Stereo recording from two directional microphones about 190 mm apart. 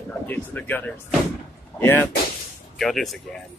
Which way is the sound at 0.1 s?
10° left (ahead or behind).